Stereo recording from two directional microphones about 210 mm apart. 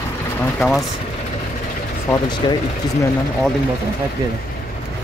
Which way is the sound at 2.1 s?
20° left (ahead or behind).